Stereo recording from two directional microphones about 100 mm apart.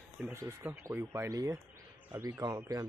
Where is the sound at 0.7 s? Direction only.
25° right (ahead or behind).